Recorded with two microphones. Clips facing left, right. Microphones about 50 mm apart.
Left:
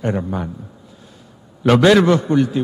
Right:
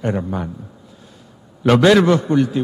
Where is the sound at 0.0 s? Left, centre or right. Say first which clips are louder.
Even; centre.